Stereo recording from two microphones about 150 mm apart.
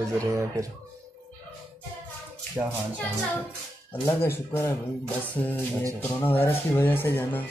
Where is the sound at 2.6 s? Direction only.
5° left (ahead or behind).